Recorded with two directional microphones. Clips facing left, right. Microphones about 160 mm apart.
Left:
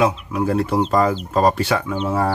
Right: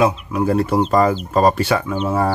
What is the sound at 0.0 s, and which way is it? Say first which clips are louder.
Speech: right 2 dB; 10° right (ahead or behind).